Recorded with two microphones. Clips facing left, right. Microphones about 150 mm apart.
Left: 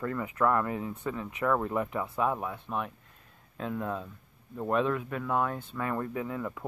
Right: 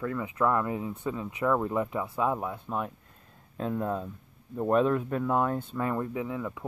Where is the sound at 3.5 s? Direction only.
30° right (ahead or behind).